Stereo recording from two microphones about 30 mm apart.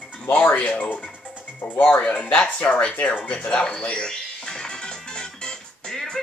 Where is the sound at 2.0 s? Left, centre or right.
Left.